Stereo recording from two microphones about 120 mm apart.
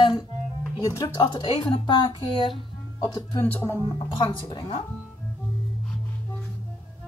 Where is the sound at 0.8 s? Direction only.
35° left (ahead or behind).